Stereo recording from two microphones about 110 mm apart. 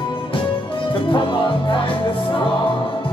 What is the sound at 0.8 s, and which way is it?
Music, 50° left (ahead or behind).